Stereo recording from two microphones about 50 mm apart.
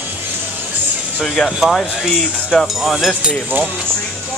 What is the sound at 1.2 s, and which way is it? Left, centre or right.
Speech, centre.